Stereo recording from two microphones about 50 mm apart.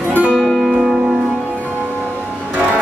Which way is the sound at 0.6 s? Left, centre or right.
Centre.